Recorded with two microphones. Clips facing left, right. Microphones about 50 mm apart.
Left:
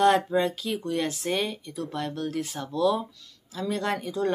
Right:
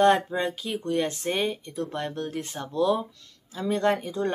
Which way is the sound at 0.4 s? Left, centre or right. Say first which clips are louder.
Left 2 dB; right.